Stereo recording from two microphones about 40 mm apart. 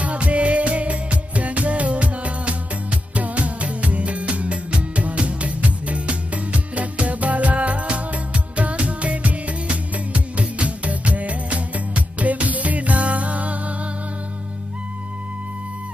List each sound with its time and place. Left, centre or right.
0.0 s music: right